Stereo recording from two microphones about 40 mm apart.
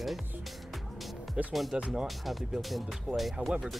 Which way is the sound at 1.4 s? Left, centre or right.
Right.